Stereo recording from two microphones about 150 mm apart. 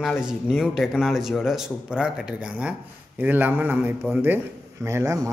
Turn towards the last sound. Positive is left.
turn(degrees=-20)  # may be behind; listen again after turning